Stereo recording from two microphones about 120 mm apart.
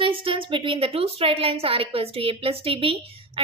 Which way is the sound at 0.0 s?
50° right (ahead or behind).